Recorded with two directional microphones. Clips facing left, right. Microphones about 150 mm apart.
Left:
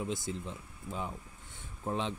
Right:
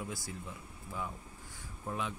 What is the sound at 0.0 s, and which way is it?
Speech, 20° left (ahead or behind).